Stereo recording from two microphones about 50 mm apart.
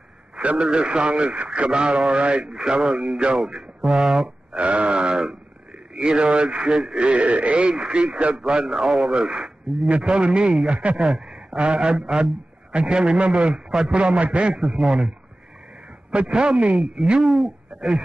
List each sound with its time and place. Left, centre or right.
0.4 s speech: right
4.6 s speech: right
14.6 s speech: centre
16.1 s speech: centre